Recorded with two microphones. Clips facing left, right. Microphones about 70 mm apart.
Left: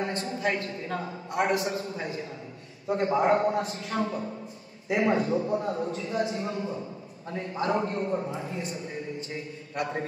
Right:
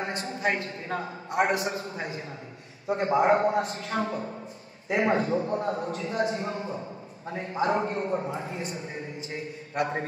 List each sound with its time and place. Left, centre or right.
0.2 s a man's voice: right
2.9 s a man's voice: right
3.5 s a man's voice: right
8.5 s a man's voice: right